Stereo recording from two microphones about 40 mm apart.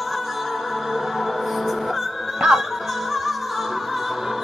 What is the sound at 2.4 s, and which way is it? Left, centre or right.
Music, right.